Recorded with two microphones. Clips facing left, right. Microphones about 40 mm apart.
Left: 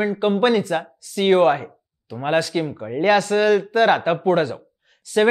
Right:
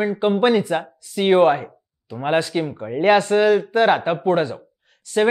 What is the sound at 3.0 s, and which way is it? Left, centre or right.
Speech, centre.